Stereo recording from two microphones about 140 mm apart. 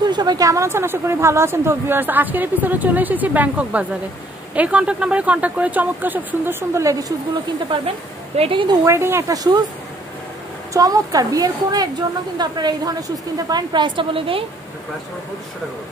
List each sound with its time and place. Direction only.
0.1 s speech: 30° right (ahead or behind)
8.4 s a woman's voice: 40° right (ahead or behind)
8.8 s a woman's voice: 20° right (ahead or behind)
10.7 s a woman's voice: 25° right (ahead or behind)